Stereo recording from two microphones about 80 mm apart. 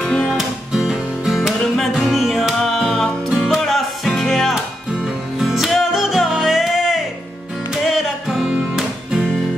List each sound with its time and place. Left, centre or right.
0.0 s music: centre
0.3 s music: centre